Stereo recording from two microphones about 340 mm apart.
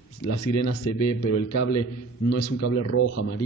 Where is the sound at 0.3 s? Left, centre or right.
Left.